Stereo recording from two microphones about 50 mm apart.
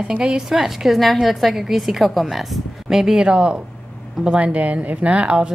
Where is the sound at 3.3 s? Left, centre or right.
Right.